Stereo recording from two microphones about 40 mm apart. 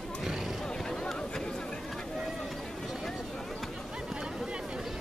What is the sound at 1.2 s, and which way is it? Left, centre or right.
Chatter, centre.